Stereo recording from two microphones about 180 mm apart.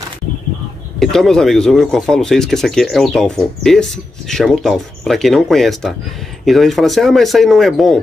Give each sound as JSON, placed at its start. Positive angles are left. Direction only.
{"t": 0.9, "sound": "speech", "side_deg": 0}